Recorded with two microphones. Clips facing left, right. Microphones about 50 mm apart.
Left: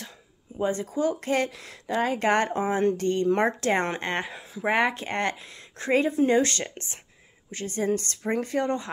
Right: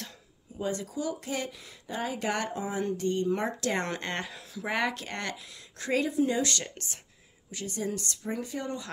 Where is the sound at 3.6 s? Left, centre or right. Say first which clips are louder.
Left 5 dB; left.